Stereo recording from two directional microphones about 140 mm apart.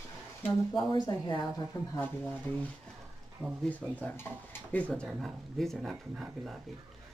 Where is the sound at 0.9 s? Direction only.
30° left (ahead or behind).